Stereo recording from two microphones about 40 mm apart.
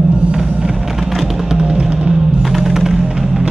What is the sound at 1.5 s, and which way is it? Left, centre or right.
Music, centre.